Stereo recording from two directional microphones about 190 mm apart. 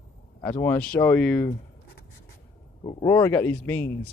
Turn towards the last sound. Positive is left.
turn(degrees=10)  # may be behind; listen again after turning